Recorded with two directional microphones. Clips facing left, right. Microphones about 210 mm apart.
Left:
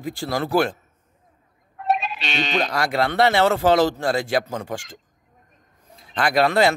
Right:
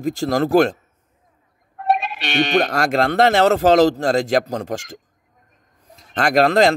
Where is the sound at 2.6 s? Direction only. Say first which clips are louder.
Right 4 dB; 50° right (ahead or behind).